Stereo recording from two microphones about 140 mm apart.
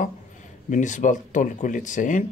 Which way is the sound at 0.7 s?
60° left (ahead or behind).